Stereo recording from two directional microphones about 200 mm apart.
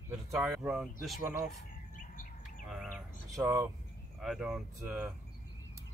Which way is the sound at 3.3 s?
15° right (ahead or behind).